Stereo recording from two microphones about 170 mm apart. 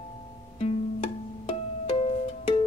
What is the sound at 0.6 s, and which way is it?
Music, 35° left (ahead or behind).